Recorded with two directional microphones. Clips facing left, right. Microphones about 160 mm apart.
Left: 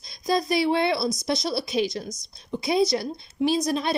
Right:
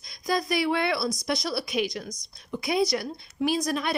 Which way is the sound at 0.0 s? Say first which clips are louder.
Left 3 dB; 25° left (ahead or behind).